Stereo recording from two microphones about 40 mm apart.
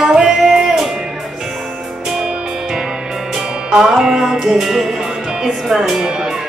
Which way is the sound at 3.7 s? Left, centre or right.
Centre.